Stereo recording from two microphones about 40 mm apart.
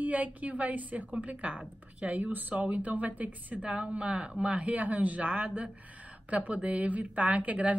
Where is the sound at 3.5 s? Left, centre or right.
Right.